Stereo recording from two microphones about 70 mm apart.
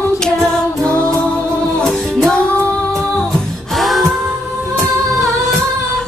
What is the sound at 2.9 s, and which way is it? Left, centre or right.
Music, centre.